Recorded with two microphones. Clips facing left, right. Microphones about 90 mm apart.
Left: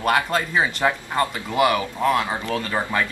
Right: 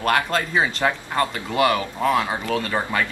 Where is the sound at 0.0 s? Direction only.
5° left (ahead or behind).